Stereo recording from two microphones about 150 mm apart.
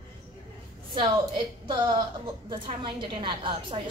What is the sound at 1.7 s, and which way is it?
A woman's voice, 30° right (ahead or behind).